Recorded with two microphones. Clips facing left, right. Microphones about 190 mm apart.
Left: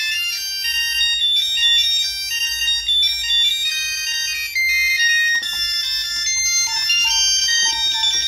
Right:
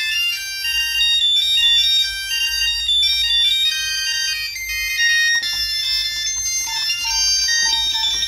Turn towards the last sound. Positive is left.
turn(degrees=20)  # may be behind; listen again after turning